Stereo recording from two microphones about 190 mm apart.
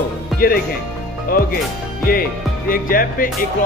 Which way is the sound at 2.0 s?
50° left (ahead or behind).